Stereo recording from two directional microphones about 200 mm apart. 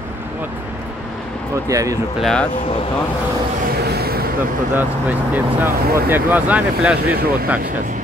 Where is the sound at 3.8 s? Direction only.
55° right (ahead or behind).